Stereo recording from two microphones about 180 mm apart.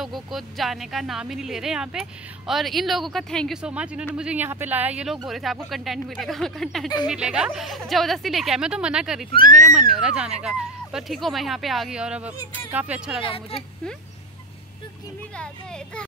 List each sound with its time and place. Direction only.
0.0 s speech: centre (ahead or behind)
9.3 s speech: 55° right (ahead or behind)
9.6 s speech: centre (ahead or behind)
13.2 s a woman's voice: 30° left (ahead or behind)
15.3 s speech: 5° left (ahead or behind)